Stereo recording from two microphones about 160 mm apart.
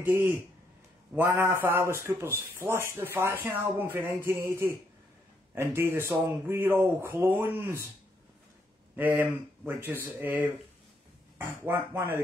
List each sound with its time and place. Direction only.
0.0 s speech: 15° right (ahead or behind)
8.9 s speech: 10° right (ahead or behind)